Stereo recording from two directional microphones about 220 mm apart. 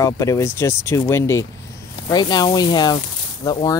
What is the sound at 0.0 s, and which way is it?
Speech, 15° left (ahead or behind).